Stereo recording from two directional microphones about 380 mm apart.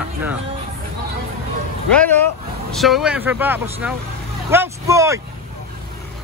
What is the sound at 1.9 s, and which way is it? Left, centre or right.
Speech, centre.